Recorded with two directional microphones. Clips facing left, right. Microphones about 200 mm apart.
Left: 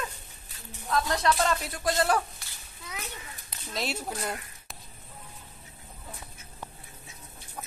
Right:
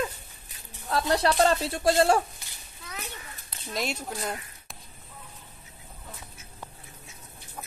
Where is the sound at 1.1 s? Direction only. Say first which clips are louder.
Right 6 dB; 35° right (ahead or behind).